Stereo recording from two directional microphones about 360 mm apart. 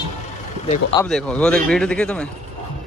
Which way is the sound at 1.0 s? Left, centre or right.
Centre.